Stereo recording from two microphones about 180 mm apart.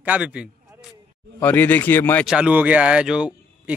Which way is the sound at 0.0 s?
5° right (ahead or behind).